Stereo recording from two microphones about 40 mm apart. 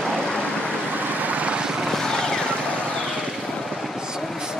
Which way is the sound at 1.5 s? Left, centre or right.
Centre.